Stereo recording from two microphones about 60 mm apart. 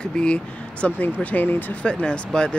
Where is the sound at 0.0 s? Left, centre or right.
Centre.